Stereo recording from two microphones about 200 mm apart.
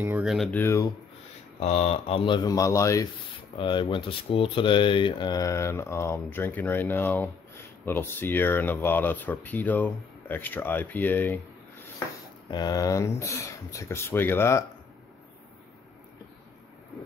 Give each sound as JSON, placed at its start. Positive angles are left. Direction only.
{"t": 0.0, "sound": "speech", "side_deg": -5}
{"t": 1.6, "sound": "speech", "side_deg": 30}
{"t": 12.4, "sound": "speech", "side_deg": 20}